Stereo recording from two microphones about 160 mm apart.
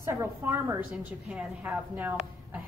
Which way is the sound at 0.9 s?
5° right (ahead or behind).